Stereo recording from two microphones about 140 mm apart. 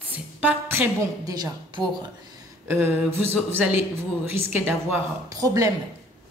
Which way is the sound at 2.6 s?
20° right (ahead or behind).